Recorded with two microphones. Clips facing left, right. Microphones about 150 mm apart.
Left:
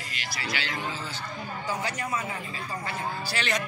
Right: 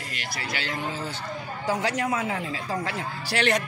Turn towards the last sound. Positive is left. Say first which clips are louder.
# right 5 dB
turn(degrees=-65)  # may be behind; listen again after turning